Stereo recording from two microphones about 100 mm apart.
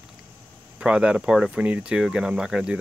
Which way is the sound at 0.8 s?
10° right (ahead or behind).